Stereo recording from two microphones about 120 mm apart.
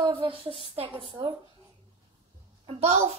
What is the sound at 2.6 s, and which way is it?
Speech, 60° right (ahead or behind).